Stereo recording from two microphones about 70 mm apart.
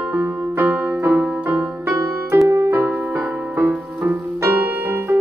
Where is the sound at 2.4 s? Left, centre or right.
Right.